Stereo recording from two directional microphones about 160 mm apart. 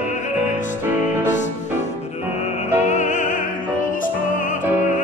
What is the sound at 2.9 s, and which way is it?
Music, 50° left (ahead or behind).